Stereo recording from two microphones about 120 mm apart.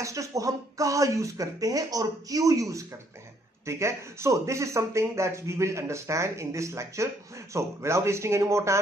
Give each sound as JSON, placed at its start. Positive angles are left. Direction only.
{"t": 0.0, "sound": "speech", "side_deg": -25}